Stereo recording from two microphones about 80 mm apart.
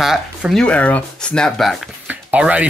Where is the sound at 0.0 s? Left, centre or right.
Centre.